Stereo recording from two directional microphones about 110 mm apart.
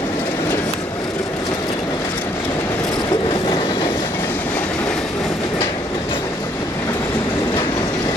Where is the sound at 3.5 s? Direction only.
50° left (ahead or behind).